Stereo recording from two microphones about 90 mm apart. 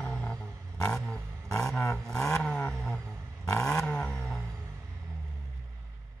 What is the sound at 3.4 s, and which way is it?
Vehicle, 35° left (ahead or behind).